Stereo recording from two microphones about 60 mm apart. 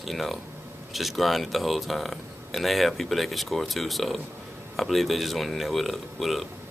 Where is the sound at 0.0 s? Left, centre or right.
Centre.